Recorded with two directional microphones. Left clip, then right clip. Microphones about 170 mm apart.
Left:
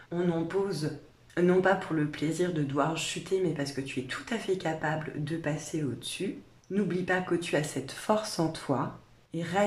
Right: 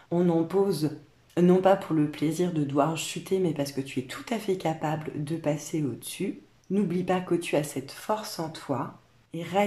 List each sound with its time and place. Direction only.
0.1 s speech: 25° right (ahead or behind)
7.8 s speech: centre (ahead or behind)
9.3 s speech: 10° right (ahead or behind)